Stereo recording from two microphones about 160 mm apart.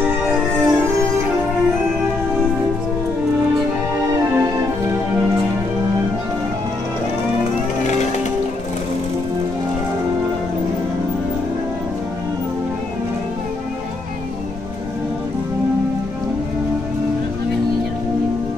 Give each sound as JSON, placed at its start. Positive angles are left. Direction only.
{"t": 0.0, "sound": "music", "side_deg": -5}